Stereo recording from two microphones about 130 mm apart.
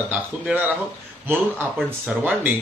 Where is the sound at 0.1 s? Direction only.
10° right (ahead or behind).